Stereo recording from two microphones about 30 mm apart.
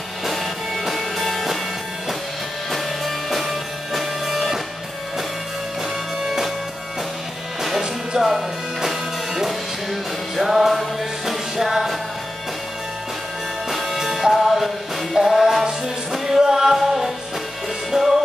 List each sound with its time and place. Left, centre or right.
0.2 s music: centre
3.3 s music: centre
6.2 s music: centre
8.2 s music: centre
13.7 s music: centre